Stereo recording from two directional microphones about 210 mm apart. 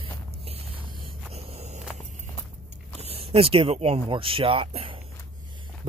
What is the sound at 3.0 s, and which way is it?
Speech, 30° right (ahead or behind).